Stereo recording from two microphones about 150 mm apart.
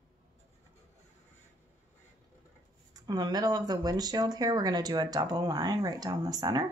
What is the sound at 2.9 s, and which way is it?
Speech, 25° right (ahead or behind).